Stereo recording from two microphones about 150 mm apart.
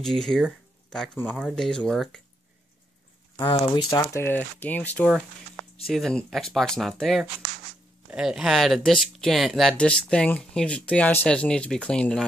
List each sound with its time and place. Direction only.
0.0 s speech: 5° left (ahead or behind)
3.3 s speech: 30° left (ahead or behind)
4.0 s speech: 15° left (ahead or behind)